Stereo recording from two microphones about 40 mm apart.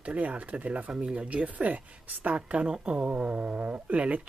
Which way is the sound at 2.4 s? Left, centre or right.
Right.